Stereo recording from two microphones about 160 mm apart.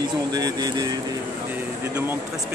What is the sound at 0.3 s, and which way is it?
Speech, 25° right (ahead or behind).